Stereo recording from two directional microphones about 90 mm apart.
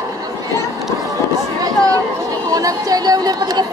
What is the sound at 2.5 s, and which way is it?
Speech, 40° right (ahead or behind).